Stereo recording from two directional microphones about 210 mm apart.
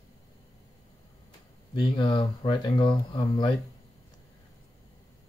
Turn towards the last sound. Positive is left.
turn(degrees=20)  # may be behind; listen again after turning